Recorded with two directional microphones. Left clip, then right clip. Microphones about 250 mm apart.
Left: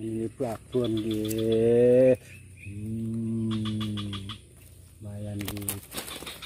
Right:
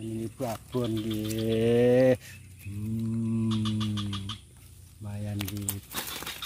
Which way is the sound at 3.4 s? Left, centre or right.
Right.